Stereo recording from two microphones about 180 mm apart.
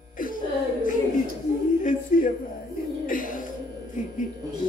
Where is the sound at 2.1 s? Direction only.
45° left (ahead or behind).